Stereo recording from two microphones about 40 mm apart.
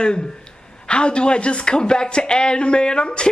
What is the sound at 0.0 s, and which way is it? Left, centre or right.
Speech, left.